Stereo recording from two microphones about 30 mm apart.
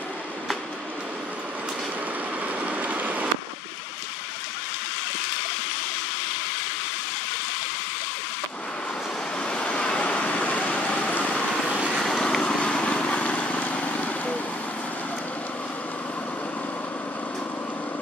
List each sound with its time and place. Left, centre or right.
2.4 s vehicle: right
9.4 s vehicle: left
12.2 s vehicle: left
13.5 s vehicle: left